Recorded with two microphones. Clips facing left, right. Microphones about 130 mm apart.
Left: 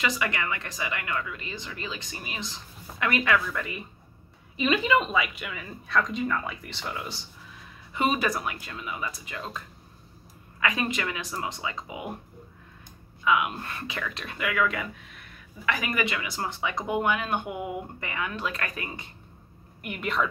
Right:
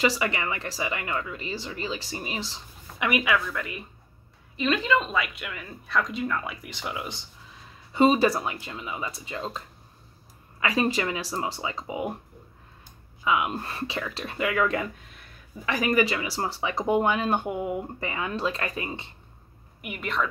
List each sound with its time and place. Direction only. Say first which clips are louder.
0.0 s speech: right 3 dB; 30° right (ahead or behind)
3.0 s a woman's voice: even; 10° right (ahead or behind)
7.9 s speech: right 6 dB; 30° right (ahead or behind)
10.6 s speech: right 3 dB; 30° right (ahead or behind)
13.2 s speech: even; 30° right (ahead or behind)
19.8 s a woman's voice: left 1 dB; centre (ahead or behind)